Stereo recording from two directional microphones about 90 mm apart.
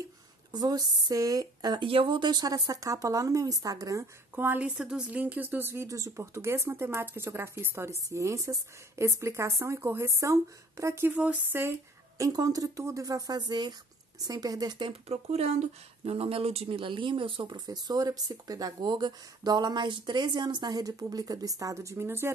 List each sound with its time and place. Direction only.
0.5 s speech: 45° right (ahead or behind)
1.9 s speech: 75° right (ahead or behind); by 4.0 s 40° right (ahead or behind)
4.4 s speech: 20° right (ahead or behind)
4.6 s speech: 10° right (ahead or behind); by 5.9 s 25° right (ahead or behind)
5.9 s speech: 35° right (ahead or behind)
11.1 s speech: 20° right (ahead or behind)
12.2 s speech: 40° right (ahead or behind)
16.1 s speech: 90° right
17.5 s speech: 55° right (ahead or behind); by 22.3 s 30° right (ahead or behind)